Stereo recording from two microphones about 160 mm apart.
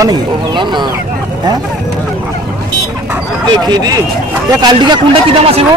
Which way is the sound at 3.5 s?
25° right (ahead or behind).